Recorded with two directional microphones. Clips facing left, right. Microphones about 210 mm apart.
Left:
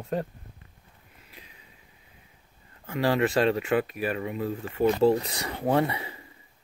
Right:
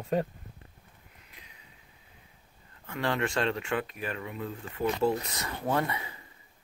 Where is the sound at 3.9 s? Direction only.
20° left (ahead or behind).